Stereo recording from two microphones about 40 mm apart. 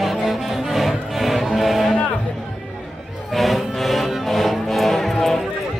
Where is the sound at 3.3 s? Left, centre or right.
Centre.